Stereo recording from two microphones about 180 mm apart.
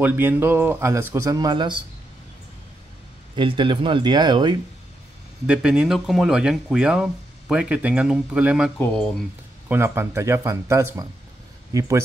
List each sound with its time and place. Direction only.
0.0 s speech: 10° right (ahead or behind)
3.3 s speech: 30° right (ahead or behind)
5.5 s speech: 5° right (ahead or behind)
8.7 s speech: 5° left (ahead or behind)
9.7 s speech: 10° right (ahead or behind)